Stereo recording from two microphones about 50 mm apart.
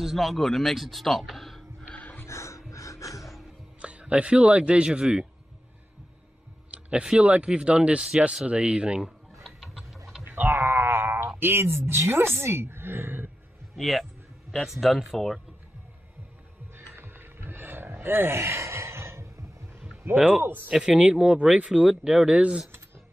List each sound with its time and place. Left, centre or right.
0.0 s speech: centre
1.9 s a sound: left
2.2 s dog: left
2.7 s music: left
3.8 s speech: right
6.7 s speech: centre
9.4 s a sound: centre
10.2 s groan: right
12.0 s a woman's voice: right
13.7 s a man's voice: centre
16.7 s a sound: right
20.1 s a woman's voice: right
20.4 s a woman's voice: right
20.8 s speech: centre